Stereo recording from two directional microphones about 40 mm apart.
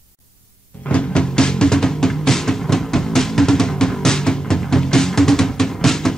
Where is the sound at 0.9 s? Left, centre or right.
Left.